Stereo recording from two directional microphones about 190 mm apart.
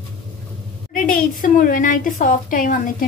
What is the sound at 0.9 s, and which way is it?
A woman's voice, 45° left (ahead or behind).